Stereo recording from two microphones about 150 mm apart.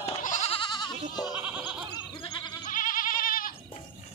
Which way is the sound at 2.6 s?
65° left (ahead or behind).